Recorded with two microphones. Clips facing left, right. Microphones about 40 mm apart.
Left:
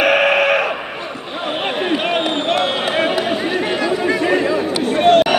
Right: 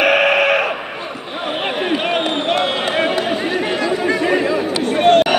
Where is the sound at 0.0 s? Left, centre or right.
Centre.